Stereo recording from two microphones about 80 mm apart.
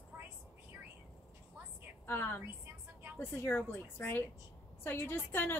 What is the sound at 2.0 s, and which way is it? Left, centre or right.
A woman's voice, left.